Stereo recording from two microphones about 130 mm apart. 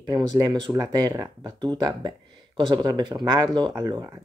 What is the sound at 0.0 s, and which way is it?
Speech, 30° right (ahead or behind).